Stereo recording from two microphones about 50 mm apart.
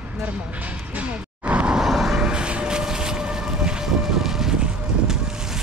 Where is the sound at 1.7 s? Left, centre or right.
Centre.